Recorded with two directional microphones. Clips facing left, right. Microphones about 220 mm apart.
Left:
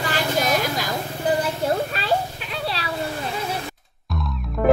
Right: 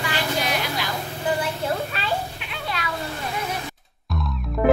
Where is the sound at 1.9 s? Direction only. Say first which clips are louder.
Left 4 dB; 35° left (ahead or behind).